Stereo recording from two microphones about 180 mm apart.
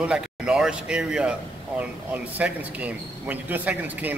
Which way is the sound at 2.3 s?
10° right (ahead or behind).